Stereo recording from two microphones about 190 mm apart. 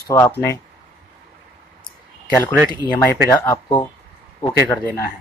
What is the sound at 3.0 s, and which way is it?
Speech, 15° left (ahead or behind).